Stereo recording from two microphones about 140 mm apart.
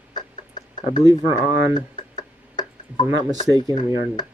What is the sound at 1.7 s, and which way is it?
Tick-tock, 30° left (ahead or behind).